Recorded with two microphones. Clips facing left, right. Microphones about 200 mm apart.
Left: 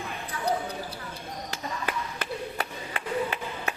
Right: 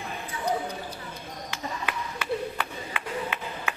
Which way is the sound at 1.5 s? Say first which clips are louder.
Left 1 dB; 40° left (ahead or behind).